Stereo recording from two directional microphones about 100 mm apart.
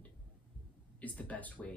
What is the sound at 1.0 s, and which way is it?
Speech, 15° left (ahead or behind).